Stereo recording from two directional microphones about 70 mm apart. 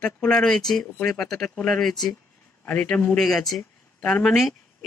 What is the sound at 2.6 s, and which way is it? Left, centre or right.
Speech, centre.